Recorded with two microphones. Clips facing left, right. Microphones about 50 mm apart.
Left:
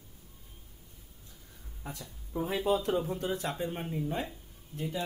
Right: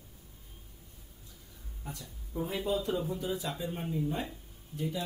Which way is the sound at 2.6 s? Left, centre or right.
Left.